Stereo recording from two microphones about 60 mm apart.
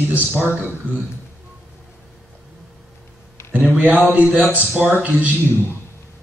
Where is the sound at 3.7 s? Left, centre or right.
Right.